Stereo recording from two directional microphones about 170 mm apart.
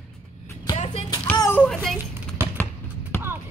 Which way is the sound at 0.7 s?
40° left (ahead or behind).